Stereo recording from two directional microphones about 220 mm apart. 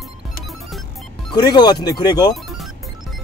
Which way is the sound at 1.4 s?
20° left (ahead or behind).